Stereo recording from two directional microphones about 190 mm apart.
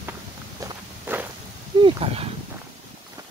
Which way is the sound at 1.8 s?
30° right (ahead or behind).